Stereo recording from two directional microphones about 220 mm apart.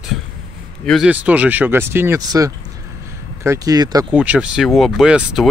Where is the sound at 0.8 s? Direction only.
Centre (ahead or behind); by 4.1 s 15° right (ahead or behind).